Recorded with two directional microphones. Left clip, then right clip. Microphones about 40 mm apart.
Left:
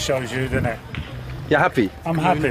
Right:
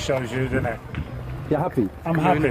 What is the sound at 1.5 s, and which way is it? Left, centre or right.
Speech, left.